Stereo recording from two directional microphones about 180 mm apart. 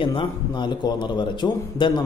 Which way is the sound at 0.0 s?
30° left (ahead or behind).